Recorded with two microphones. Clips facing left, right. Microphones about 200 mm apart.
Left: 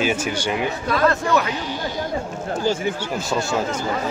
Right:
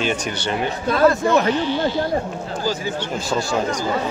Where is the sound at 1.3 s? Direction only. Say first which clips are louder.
Right 3 dB; 35° right (ahead or behind).